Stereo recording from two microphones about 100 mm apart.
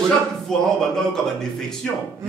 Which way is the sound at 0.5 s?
5° left (ahead or behind).